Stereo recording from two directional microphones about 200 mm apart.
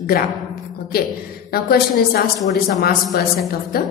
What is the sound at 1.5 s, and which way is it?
A woman's voice, 50° left (ahead or behind).